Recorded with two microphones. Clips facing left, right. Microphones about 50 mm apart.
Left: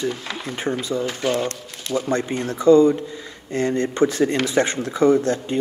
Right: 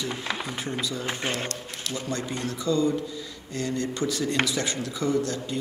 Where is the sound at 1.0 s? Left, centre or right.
Right.